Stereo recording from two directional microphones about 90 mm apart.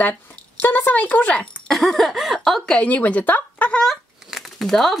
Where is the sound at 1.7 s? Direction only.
Centre (ahead or behind).